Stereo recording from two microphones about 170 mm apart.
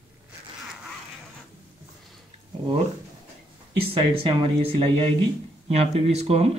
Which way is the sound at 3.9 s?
35° right (ahead or behind).